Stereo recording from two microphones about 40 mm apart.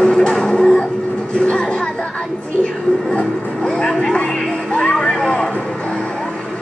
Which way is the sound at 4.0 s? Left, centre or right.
Left.